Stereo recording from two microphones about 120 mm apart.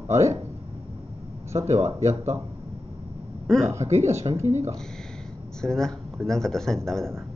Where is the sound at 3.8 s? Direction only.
70° right (ahead or behind).